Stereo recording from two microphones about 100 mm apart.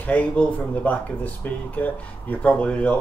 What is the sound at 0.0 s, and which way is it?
Speech, 15° left (ahead or behind).